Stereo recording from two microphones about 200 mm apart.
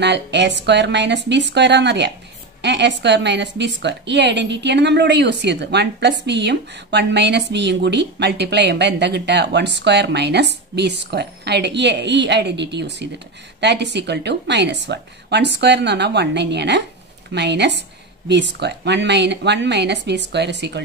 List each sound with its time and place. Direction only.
0.0 s a woman's voice: 60° right (ahead or behind)